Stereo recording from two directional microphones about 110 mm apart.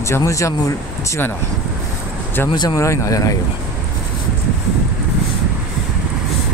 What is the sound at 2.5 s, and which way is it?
Speech, 40° left (ahead or behind).